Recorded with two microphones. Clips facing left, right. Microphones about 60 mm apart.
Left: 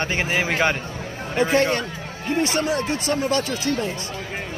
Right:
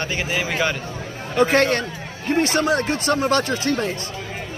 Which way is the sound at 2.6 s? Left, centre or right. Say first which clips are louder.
Right 3 dB; right.